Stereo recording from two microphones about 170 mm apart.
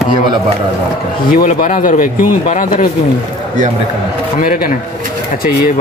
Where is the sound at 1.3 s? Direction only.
55° left (ahead or behind).